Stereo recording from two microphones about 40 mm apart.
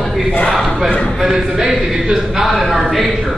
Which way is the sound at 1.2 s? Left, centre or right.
Centre.